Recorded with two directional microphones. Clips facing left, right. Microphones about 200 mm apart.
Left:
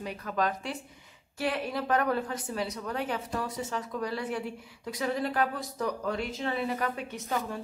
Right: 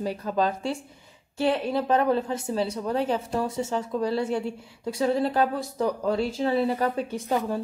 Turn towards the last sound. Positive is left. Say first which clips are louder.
# right 7 dB
turn(degrees=-30)  # may be behind; listen again after turning